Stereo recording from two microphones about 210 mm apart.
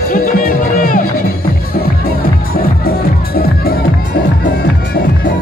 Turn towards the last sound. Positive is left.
turn(degrees=45)  # may be behind; listen again after turning